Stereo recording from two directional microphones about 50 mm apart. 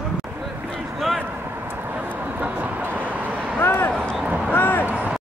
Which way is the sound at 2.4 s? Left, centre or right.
Right.